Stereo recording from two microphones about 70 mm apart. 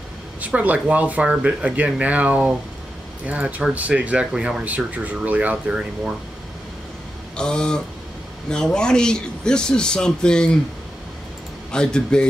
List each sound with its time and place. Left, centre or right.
0.4 s speech: right
7.3 s a man's voice: centre
11.7 s a man's voice: centre